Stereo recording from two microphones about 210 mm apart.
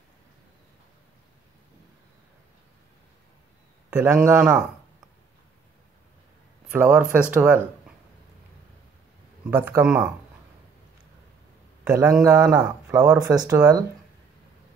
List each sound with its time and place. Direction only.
3.9 s speech: 10° right (ahead or behind)
6.7 s speech: 5° right (ahead or behind)
9.4 s speech: 10° right (ahead or behind)
11.9 s speech: 15° right (ahead or behind)